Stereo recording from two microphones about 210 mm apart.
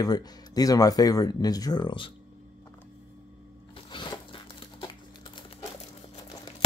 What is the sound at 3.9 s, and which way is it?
Crumpling, 25° left (ahead or behind).